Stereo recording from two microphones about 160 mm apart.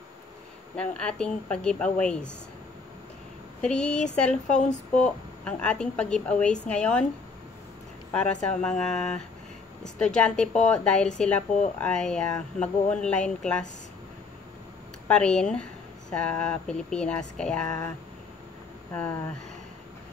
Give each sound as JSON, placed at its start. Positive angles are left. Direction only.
{"t": 0.7, "sound": "speech", "side_deg": 5}
{"t": 3.6, "sound": "a woman's voice", "side_deg": 5}
{"t": 4.5, "sound": "speech", "side_deg": 45}
{"t": 4.9, "sound": "a woman's voice", "side_deg": 5}
{"t": 8.1, "sound": "speech", "side_deg": 5}
{"t": 15.0, "sound": "speech", "side_deg": 5}